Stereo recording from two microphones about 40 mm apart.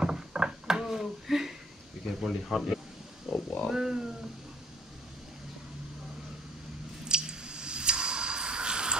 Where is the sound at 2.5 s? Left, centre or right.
Centre.